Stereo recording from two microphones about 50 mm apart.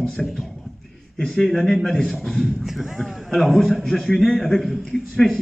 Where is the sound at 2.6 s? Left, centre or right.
Centre.